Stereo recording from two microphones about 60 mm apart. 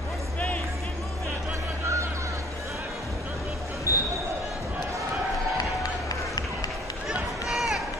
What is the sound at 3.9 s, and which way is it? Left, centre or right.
Basketball bounce, left.